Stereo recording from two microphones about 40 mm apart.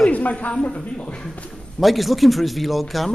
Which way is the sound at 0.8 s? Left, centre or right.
Left.